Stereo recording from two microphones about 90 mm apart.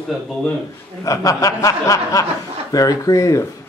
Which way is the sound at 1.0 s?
40° left (ahead or behind).